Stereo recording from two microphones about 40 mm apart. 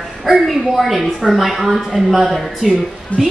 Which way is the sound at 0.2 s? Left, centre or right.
Centre.